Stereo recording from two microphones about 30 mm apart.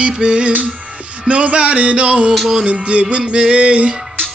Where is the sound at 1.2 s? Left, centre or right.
Right.